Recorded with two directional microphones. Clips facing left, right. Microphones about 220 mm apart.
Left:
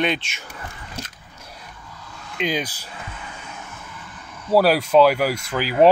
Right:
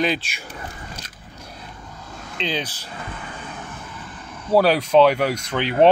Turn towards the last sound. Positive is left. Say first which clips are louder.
# even
turn(degrees=5)  # may be behind; listen again after turning